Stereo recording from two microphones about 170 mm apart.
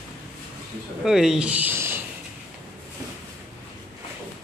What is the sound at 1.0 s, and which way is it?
Speech, 5° right (ahead or behind).